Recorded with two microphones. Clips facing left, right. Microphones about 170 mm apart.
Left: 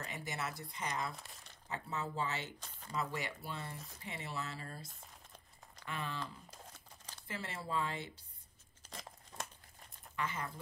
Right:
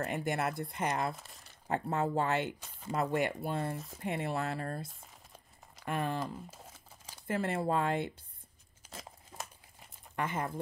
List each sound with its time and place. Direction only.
0.0 s speech: 55° right (ahead or behind)
1.1 s speech: centre (ahead or behind)
1.7 s speech: 55° right (ahead or behind)
4.8 s crumpling: 5° right (ahead or behind)
5.9 s speech: 50° right (ahead or behind)
6.5 s crumpling: 5° right (ahead or behind)
7.2 s speech: 50° right (ahead or behind)
8.9 s crumpling: 5° right (ahead or behind)
10.1 s speech: 55° right (ahead or behind)